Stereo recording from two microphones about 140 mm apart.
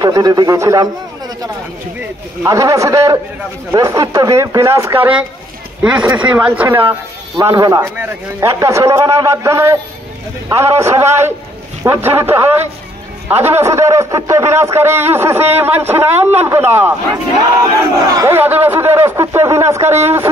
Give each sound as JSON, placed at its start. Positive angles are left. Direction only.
{"t": 0.0, "sound": "a man's voice", "side_deg": -30}
{"t": 7.3, "sound": "a man's voice", "side_deg": -25}
{"t": 18.1, "sound": "a man's voice", "side_deg": -20}